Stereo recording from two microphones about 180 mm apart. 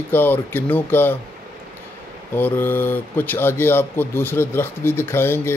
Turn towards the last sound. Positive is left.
turn(degrees=15)  # may be behind; listen again after turning